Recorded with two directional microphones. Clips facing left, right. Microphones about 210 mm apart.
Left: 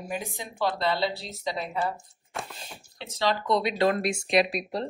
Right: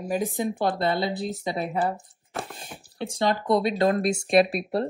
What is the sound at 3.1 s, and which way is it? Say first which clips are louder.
Speech: right 3 dB; 50° right (ahead or behind).